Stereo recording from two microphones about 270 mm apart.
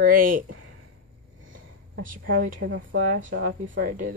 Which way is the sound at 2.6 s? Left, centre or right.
Right.